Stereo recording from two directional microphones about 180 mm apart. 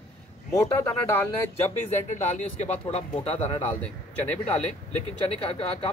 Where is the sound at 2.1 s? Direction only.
40° left (ahead or behind).